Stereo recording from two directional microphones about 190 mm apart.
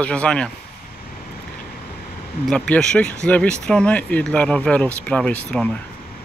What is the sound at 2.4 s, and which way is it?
Speech, 5° left (ahead or behind).